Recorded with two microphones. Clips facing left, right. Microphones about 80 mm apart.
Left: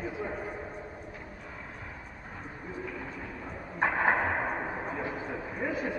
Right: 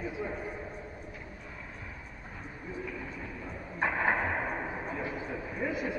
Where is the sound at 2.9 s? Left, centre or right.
Left.